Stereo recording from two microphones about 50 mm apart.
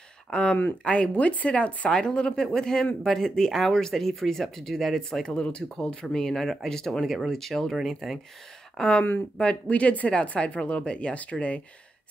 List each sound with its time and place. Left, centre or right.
0.3 s speech: centre
1.9 s speech: centre
6.0 s speech: centre
9.4 s speech: left